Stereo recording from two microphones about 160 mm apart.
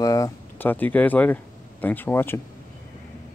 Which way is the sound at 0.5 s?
10° left (ahead or behind).